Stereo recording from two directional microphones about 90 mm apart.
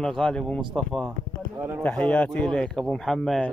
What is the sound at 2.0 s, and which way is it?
Speech, 15° left (ahead or behind).